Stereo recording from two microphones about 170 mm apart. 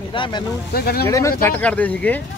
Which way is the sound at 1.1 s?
20° left (ahead or behind).